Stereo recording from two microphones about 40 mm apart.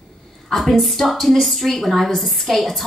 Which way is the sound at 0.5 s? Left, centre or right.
Centre.